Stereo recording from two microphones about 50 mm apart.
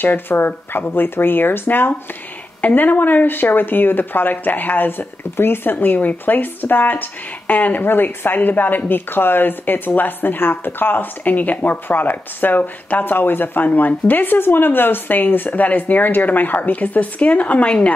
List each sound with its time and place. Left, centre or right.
0.0 s speech: left
11.2 s speech: left